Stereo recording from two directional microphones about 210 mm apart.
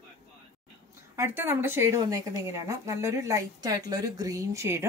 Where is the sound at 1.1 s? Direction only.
10° right (ahead or behind).